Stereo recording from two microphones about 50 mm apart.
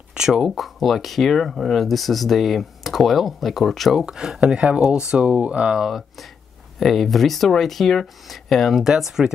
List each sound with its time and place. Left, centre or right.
0.3 s speech: centre
4.0 s speech: centre
5.8 s speech: centre